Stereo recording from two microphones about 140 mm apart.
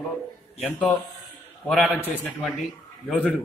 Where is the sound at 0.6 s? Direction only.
10° left (ahead or behind).